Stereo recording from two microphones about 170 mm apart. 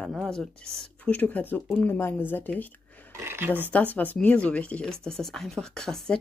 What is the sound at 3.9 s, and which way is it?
Speech, 10° left (ahead or behind).